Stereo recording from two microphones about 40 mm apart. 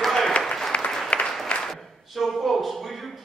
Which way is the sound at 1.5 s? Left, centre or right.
Left.